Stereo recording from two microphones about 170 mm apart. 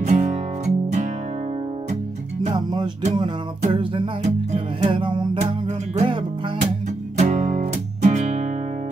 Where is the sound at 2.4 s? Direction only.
25° right (ahead or behind); by 4.9 s 40° right (ahead or behind).